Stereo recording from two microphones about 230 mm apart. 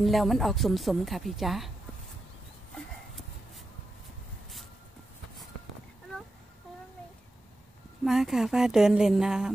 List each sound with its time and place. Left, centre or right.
0.0 s a woman's voice: centre
2.7 s a sound: centre
8.0 s a woman's voice: centre